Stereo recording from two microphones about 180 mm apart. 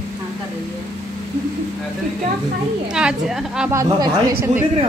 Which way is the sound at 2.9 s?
5° right (ahead or behind).